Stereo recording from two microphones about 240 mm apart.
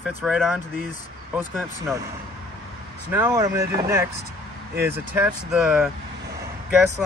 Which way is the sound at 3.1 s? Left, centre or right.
Centre.